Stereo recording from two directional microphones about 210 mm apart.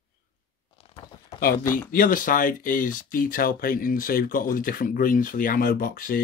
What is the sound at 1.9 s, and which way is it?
Speech, 40° left (ahead or behind).